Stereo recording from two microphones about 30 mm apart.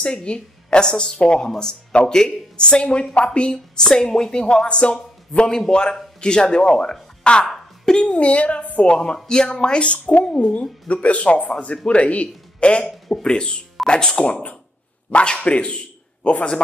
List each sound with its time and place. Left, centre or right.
0.0 s a woman's voice: left
7.4 s a sound: centre
8.0 s speech: left
8.9 s a woman's voice: left
14.2 s a woman's voice: left